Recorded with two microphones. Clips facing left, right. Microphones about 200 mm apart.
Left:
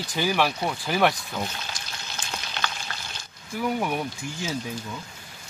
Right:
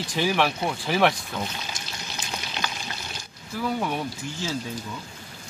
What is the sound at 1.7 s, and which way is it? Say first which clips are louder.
Frying: right 2 dB; 20° right (ahead or behind).